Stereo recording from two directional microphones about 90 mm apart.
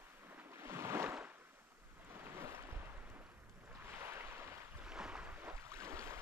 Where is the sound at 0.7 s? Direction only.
30° right (ahead or behind).